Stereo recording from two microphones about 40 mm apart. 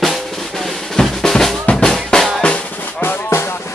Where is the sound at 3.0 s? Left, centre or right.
Left.